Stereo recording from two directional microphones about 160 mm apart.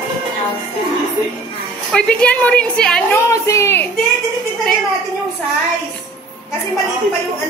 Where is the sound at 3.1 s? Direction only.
15° left (ahead or behind).